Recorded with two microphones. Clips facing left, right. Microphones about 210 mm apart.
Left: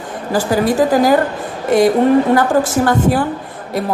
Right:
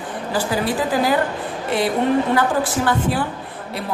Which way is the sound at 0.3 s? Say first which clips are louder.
Left 7 dB; 45° left (ahead or behind).